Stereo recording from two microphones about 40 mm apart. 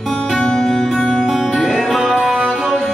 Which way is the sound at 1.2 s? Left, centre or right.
Centre.